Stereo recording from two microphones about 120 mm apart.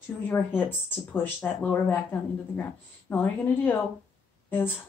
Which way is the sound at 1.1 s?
15° left (ahead or behind).